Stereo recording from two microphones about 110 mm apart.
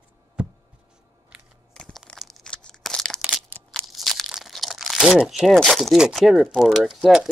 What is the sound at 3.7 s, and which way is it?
Speech, centre (ahead or behind).